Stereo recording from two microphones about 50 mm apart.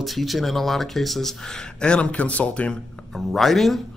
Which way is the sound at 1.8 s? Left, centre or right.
Centre.